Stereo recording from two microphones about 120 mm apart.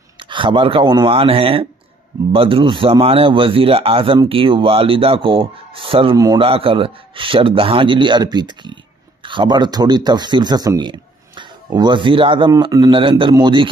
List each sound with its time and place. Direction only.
0.2 s speech: 45° right (ahead or behind)
6.1 s speech: 30° right (ahead or behind)
6.4 s speech: 50° right (ahead or behind); by 12.9 s 35° right (ahead or behind)
12.9 s speech: 45° right (ahead or behind)